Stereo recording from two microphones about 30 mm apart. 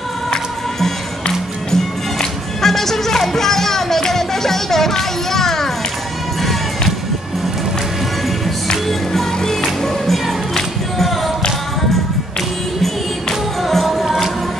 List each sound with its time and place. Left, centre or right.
1.7 s music: centre
9.4 s music: centre
10.0 s music: centre
13.8 s music: centre